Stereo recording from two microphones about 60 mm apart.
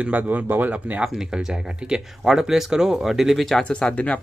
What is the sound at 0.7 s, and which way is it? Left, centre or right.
Speech, right.